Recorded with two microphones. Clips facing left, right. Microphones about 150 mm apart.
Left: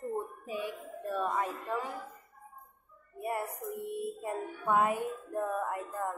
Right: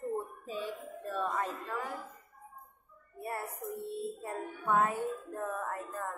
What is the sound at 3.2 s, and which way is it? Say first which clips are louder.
Speech: left 3 dB; 15° left (ahead or behind).